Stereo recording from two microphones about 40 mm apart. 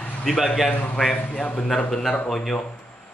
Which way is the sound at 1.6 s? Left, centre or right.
Centre.